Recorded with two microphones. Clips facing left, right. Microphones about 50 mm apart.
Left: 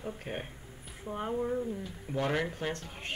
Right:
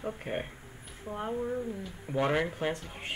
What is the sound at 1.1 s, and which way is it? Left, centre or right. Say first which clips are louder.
Speech: left 1 dB; centre.